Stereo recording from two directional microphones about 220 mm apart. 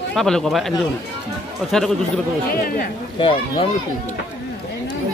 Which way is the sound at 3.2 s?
25° left (ahead or behind).